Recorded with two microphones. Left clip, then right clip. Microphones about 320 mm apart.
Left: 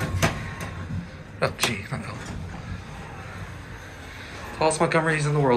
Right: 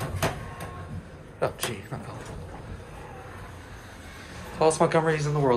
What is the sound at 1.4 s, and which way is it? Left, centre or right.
Speech, centre.